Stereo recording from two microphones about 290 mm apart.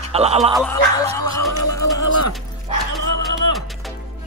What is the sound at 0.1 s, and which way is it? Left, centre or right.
Speech, right.